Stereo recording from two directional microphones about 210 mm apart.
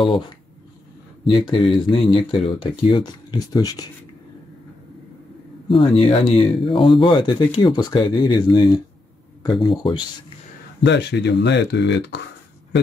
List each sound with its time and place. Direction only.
1.2 s speech: 25° left (ahead or behind)
5.8 s speech: 30° left (ahead or behind)
10.8 s speech: 55° left (ahead or behind)